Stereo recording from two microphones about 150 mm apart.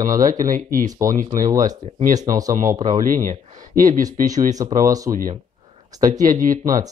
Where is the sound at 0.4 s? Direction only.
65° right (ahead or behind).